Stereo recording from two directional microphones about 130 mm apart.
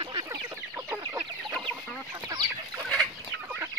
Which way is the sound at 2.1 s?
30° right (ahead or behind).